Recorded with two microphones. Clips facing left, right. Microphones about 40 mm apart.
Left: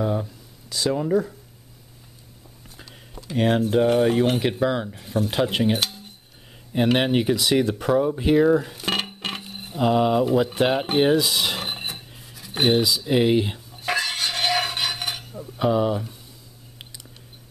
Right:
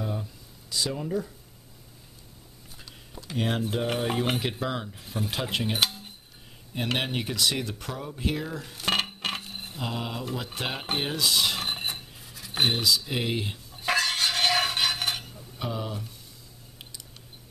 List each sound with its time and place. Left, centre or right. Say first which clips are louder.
0.0 s a sound: left 9 dB; left
0.7 s speech: left 6 dB; centre
0.9 s speech: left 9 dB; left
3.3 s speech: left 9 dB; centre
5.8 s cutlery: right 1 dB; centre
6.9 s speech: left 9 dB; centre
8.7 s dishes: left 1 dB; centre
9.8 s speech: left 15 dB; centre
13.7 s stir: left 1 dB; centre
15.6 s speech: left 12 dB; left